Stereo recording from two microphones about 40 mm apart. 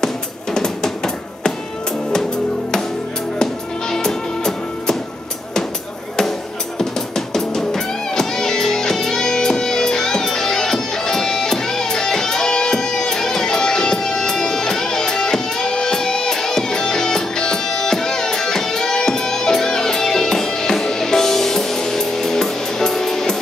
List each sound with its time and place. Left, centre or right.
0.6 s music: centre
3.9 s music: centre
6.8 s music: centre